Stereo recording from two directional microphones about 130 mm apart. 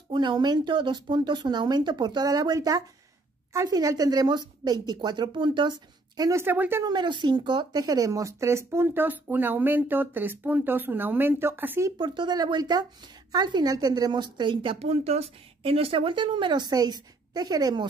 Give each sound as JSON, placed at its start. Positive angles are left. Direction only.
{"t": 0.1, "sound": "a woman's voice", "side_deg": -35}
{"t": 6.4, "sound": "speech", "side_deg": -15}
{"t": 6.8, "sound": "speech", "side_deg": -35}
{"t": 12.0, "sound": "a woman's voice", "side_deg": -40}